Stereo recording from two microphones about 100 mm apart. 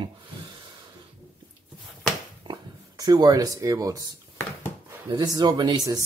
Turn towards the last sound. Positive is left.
turn(degrees=-45)  # may be behind; listen again after turning